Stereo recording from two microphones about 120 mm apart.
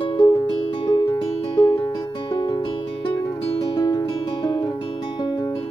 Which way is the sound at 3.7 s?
35° left (ahead or behind).